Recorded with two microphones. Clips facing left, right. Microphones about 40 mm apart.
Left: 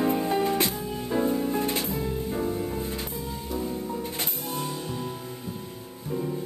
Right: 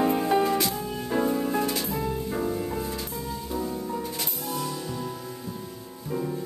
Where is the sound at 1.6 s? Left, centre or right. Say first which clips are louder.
Even; left.